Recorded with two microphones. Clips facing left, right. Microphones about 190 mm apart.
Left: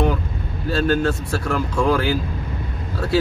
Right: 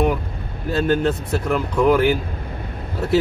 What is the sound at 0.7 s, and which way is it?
Speech, 20° right (ahead or behind).